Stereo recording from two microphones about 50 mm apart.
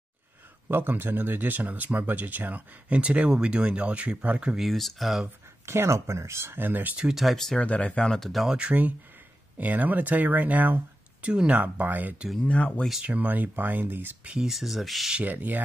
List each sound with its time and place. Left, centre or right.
0.7 s speech: right
4.6 s speech: centre
5.7 s speech: right
7.5 s speech: left
8.1 s speech: centre
8.5 s speech: right
12.4 s speech: left
13.0 s speech: right
14.4 s speech: centre
15.2 s speech: right